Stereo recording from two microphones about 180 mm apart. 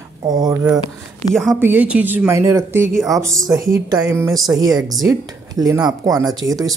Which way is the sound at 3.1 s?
15° right (ahead or behind).